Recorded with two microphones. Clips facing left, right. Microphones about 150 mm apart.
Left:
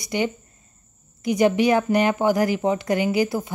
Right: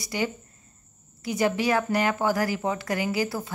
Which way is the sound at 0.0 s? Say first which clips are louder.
Left 4 dB; 20° left (ahead or behind).